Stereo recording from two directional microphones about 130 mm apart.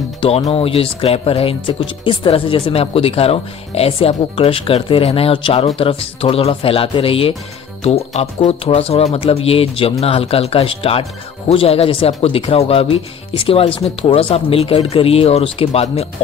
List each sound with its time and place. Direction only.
0.5 s speech: 45° left (ahead or behind)